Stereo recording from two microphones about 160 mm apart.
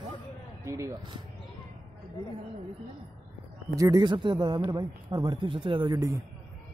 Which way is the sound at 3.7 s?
25° right (ahead or behind).